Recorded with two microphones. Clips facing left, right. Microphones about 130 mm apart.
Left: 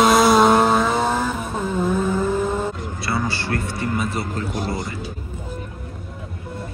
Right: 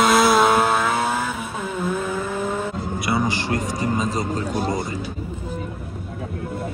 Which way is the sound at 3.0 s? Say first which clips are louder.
Right 1 dB; 15° right (ahead or behind).